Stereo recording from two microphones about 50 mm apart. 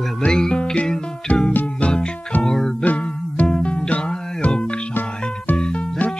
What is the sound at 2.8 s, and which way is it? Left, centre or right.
Music, left.